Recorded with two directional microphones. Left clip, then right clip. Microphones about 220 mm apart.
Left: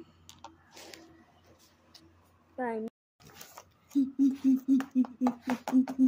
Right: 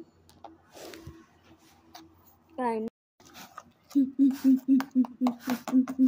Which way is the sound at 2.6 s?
30° right (ahead or behind).